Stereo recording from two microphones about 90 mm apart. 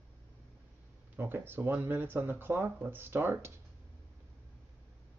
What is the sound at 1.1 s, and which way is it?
Speech, 25° right (ahead or behind).